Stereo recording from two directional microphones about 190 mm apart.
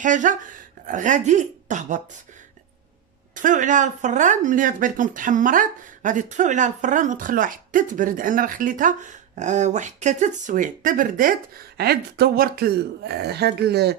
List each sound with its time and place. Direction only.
0.0 s speech: 40° right (ahead or behind)
3.3 s speech: 40° right (ahead or behind); by 13.9 s 60° right (ahead or behind)